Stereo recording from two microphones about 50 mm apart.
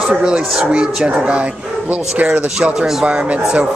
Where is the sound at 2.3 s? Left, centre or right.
Right.